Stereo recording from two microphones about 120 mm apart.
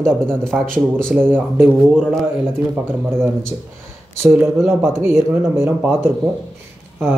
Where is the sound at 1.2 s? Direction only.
15° right (ahead or behind).